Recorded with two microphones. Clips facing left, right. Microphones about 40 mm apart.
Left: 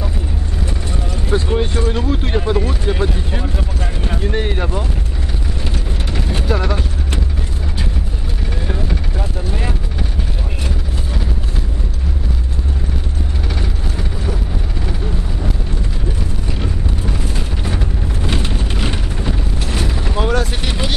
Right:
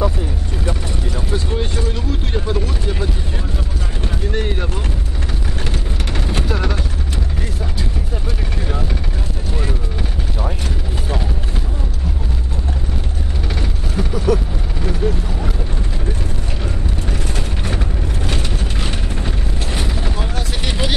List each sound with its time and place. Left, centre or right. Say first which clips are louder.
1.3 s speech: left 6 dB; left
6.4 s speech: left 5 dB; centre
18.3 s vehicle: left 2 dB; left
19.2 s mechanisms: left 2 dB; centre
20.6 s vehicle: even; centre